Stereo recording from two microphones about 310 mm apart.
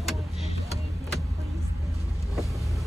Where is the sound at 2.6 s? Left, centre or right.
Centre.